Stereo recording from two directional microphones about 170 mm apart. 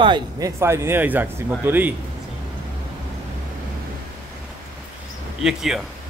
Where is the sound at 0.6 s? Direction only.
15° right (ahead or behind).